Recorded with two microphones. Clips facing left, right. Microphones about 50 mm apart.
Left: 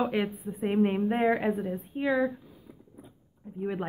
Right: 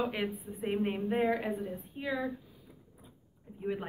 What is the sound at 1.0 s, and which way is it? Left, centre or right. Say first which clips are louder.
A woman's voice: left 5 dB; left.